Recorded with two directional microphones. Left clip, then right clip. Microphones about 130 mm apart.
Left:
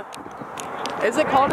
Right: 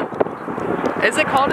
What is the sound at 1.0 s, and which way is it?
Speech, 30° right (ahead or behind).